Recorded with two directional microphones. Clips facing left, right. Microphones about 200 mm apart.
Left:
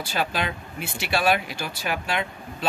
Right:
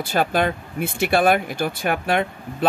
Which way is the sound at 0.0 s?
50° right (ahead or behind).